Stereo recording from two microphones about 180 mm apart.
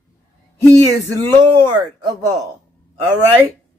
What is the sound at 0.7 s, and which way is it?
Speech, 20° right (ahead or behind).